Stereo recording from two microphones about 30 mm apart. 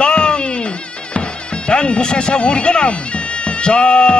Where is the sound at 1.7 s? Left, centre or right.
Left.